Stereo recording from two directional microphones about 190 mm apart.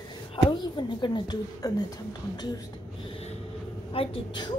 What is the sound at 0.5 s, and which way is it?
A woman's voice, 25° left (ahead or behind).